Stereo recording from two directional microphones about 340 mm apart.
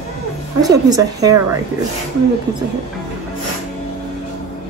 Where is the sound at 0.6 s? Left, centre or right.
Centre.